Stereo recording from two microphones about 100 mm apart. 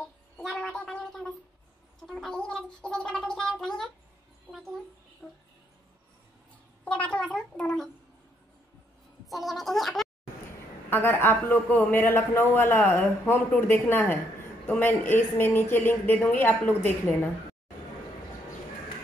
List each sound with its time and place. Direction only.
0.4 s a sound: 5° left (ahead or behind)
2.0 s speech: 5° left (ahead or behind)
4.5 s a sound: centre (ahead or behind)
5.2 s speech: 5° left (ahead or behind)
6.8 s a child's voice: 15° left (ahead or behind)
9.3 s speech: centre (ahead or behind)
10.9 s a man's voice: 20° left (ahead or behind)